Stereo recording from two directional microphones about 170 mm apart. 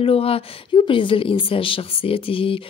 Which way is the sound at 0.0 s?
35° left (ahead or behind).